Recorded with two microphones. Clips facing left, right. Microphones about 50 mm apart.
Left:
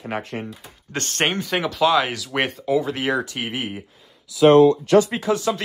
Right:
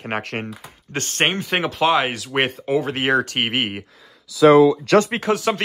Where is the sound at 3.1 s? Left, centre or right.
Right.